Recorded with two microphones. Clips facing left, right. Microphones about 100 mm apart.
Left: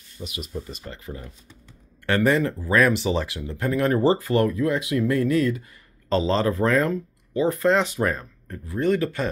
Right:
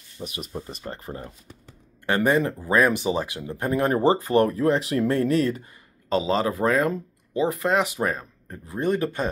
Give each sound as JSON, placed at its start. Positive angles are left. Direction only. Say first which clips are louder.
{"t": 0.2, "sound": "speech", "louder": "even", "side_deg": -40}
{"t": 2.0, "sound": "speech", "louder": "left 1 dB", "side_deg": -20}
{"t": 6.0, "sound": "speech", "louder": "left 1 dB", "side_deg": -15}